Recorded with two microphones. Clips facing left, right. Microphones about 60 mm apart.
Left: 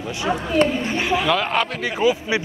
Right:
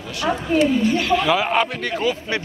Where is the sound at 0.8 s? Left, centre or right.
Left.